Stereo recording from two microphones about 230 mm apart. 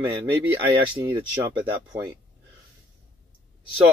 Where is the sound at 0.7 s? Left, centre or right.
Centre.